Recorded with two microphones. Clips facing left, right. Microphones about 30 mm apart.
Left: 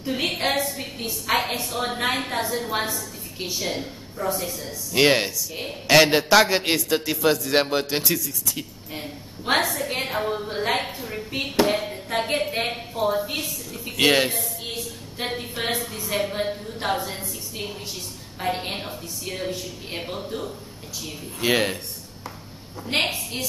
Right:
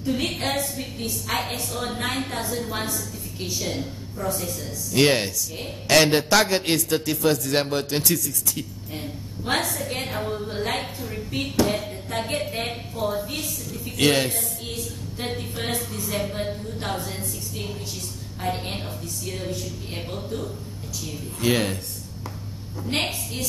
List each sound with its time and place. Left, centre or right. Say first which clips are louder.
0.0 s a woman's voice: left 1 dB; centre
22.8 s a woman's voice: left 3 dB; centre